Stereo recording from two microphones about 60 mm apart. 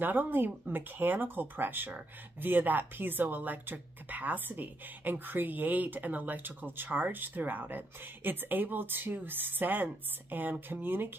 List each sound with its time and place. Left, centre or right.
0.0 s speech: right